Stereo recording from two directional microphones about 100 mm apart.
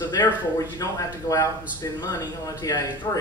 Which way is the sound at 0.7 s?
35° left (ahead or behind).